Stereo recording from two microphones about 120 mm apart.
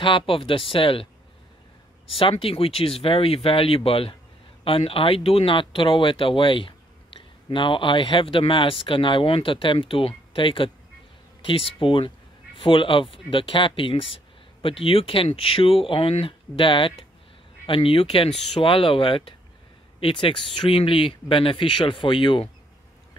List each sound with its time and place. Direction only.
0.0 s speech: 45° left (ahead or behind)
2.0 s speech: 50° left (ahead or behind)